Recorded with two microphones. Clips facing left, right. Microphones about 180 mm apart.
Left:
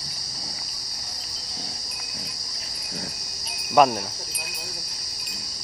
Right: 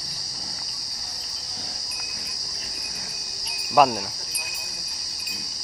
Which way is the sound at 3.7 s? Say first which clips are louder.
Left 1 dB; centre (ahead or behind).